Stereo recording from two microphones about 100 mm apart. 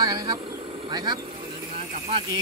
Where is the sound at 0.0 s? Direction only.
40° right (ahead or behind).